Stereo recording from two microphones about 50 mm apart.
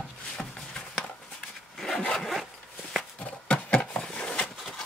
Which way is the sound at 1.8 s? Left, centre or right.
Centre.